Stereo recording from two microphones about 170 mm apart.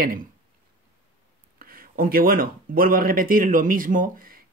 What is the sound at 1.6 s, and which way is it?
Speech, 60° right (ahead or behind).